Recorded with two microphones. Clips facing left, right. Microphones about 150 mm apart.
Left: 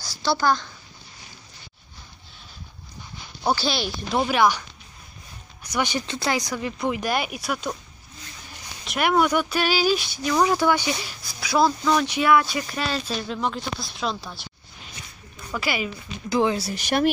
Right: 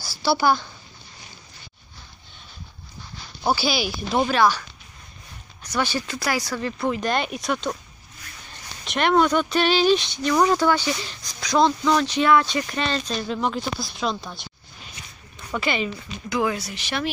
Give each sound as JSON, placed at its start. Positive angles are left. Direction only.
{"t": 0.0, "sound": "speech", "side_deg": -5}
{"t": 3.4, "sound": "speech", "side_deg": -5}
{"t": 4.3, "sound": "speech", "side_deg": 15}
{"t": 8.8, "sound": "speech", "side_deg": 5}
{"t": 15.5, "sound": "speech", "side_deg": 5}
{"t": 16.3, "sound": "speech", "side_deg": 30}
{"t": 16.8, "sound": "speech", "side_deg": 45}